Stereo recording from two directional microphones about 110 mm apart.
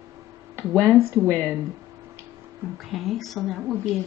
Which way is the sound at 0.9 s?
25° right (ahead or behind).